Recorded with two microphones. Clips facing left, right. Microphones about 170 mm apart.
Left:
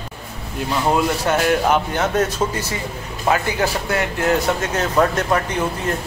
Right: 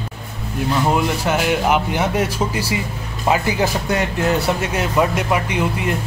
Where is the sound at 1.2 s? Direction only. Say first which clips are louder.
Left 1 dB; 5° right (ahead or behind).